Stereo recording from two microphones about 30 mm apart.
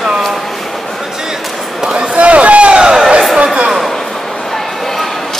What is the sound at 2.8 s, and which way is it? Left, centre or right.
Crowd, right.